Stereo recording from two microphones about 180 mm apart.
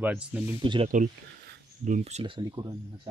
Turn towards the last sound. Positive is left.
turn(degrees=-25)  # may be behind; listen again after turning